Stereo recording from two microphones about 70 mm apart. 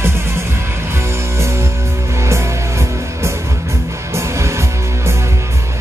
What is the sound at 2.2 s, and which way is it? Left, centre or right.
Music, right.